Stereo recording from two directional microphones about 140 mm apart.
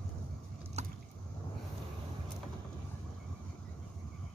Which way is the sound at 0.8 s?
50° right (ahead or behind).